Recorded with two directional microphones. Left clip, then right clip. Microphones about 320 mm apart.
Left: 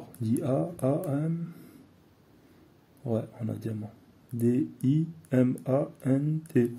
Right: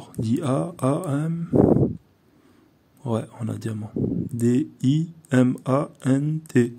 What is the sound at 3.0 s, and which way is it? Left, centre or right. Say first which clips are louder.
Speech: right 4 dB; right.